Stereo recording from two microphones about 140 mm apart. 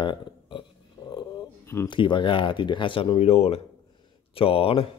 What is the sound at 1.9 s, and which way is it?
Speech, 35° left (ahead or behind).